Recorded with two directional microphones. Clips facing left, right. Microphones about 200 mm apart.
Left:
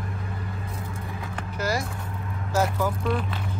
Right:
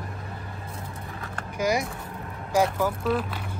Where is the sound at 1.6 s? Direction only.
15° right (ahead or behind).